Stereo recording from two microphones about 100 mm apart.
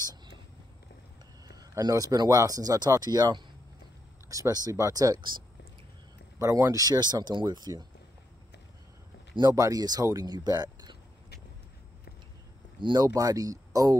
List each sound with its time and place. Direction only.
1.6 s speech: 40° right (ahead or behind)
6.3 s speech: 35° right (ahead or behind)
9.4 s speech: 35° right (ahead or behind)
12.8 s speech: 40° right (ahead or behind)